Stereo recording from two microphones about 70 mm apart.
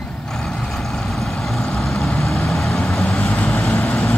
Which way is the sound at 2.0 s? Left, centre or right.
Centre.